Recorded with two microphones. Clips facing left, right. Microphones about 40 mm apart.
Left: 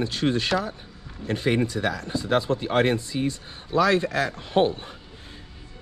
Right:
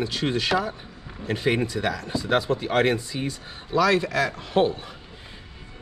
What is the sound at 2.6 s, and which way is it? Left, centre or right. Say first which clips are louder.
Speech: even; right.